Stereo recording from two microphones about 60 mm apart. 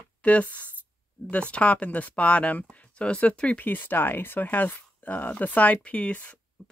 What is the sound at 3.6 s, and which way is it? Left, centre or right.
Speech, left.